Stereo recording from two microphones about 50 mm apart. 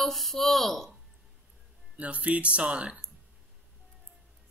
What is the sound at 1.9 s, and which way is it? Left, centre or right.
Speech, right.